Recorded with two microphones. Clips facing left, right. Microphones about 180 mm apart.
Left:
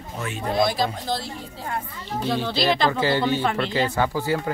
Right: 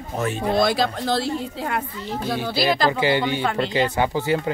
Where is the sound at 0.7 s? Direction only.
75° right (ahead or behind).